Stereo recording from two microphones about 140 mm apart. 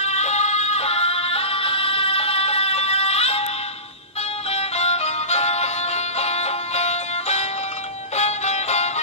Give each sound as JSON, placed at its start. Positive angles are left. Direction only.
{"t": 0.0, "sound": "music", "side_deg": 50}
{"t": 4.5, "sound": "music", "side_deg": 50}